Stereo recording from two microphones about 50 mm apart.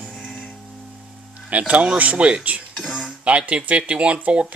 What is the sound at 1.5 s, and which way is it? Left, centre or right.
Speech, right.